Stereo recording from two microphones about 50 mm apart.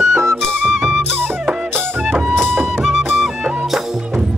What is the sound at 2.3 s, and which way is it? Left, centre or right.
Music, right.